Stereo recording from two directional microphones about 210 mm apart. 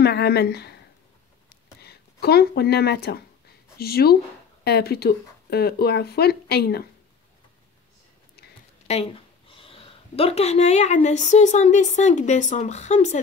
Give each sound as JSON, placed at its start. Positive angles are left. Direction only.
{"t": 0.0, "sound": "speech", "side_deg": 50}
{"t": 1.5, "sound": "a sound", "side_deg": 50}
{"t": 3.7, "sound": "speech", "side_deg": 50}
{"t": 8.8, "sound": "speech", "side_deg": 30}